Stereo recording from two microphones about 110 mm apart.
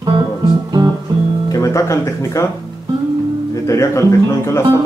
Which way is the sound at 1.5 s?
30° left (ahead or behind).